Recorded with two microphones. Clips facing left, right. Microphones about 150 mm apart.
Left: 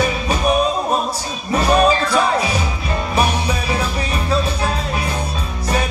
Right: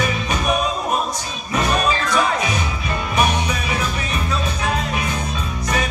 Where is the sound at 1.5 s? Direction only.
30° left (ahead or behind).